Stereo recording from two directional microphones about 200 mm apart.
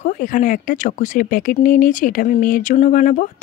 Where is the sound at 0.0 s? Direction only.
40° left (ahead or behind).